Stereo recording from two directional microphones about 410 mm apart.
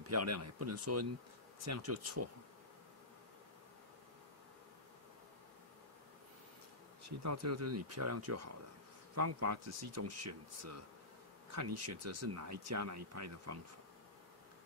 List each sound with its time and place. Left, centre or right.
0.0 s speech: right
7.1 s speech: right